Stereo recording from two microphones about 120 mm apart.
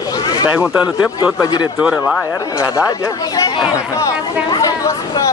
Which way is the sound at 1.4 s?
35° left (ahead or behind).